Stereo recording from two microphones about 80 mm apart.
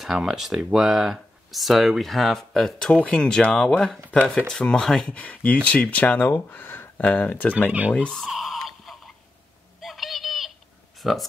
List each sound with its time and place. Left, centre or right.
0.0 s speech: centre
5.1 s speech: centre
8.2 s a sound: centre
11.0 s speech: centre